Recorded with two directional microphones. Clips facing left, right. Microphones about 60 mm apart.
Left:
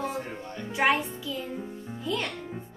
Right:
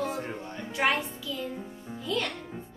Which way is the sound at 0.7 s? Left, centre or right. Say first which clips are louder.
Left 3 dB; left.